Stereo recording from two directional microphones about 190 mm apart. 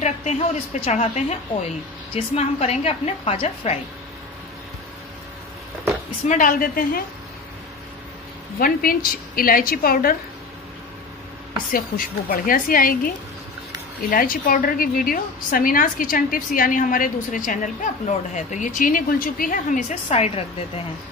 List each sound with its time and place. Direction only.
0.0 s a woman's voice: 35° left (ahead or behind)
6.2 s a woman's voice: 45° left (ahead or behind)
8.5 s a woman's voice: 50° left (ahead or behind)
12.3 s a woman's voice: 50° left (ahead or behind)
14.1 s a woman's voice: 45° left (ahead or behind)